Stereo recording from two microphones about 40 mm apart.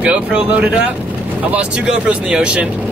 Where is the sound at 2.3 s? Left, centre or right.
Right.